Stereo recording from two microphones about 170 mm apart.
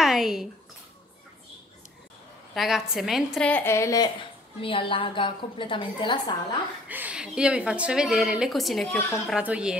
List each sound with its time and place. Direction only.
0.0 s a sound: centre (ahead or behind)
2.5 s a woman's voice: centre (ahead or behind); by 4.1 s 20° left (ahead or behind)
4.6 s a woman's voice: 30° left (ahead or behind)
6.9 s a woman's voice: 10° right (ahead or behind)